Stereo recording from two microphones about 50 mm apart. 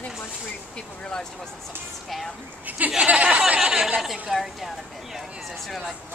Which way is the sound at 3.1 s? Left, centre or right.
Right.